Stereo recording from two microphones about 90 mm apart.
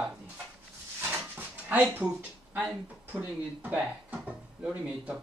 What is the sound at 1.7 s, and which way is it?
Speech, 15° right (ahead or behind).